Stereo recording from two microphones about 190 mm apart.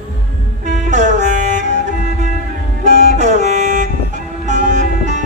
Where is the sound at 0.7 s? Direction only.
40° right (ahead or behind).